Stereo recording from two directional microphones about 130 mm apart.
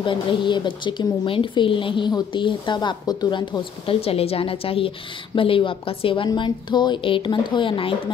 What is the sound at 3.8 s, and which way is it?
A woman's voice, 50° left (ahead or behind).